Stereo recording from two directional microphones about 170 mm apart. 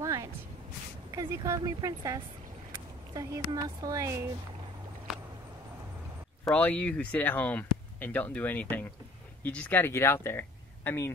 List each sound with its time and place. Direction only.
0.0 s a sound: 20° right (ahead or behind)
1.1 s speech: 20° right (ahead or behind)
6.4 s speech: 10° left (ahead or behind)